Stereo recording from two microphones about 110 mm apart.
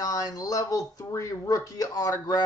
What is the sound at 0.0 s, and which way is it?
Speech, 35° left (ahead or behind).